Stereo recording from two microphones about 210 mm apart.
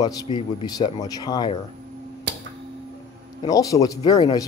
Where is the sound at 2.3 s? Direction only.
55° right (ahead or behind).